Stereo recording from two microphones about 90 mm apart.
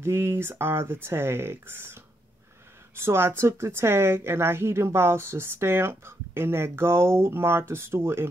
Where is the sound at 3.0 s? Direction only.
25° right (ahead or behind).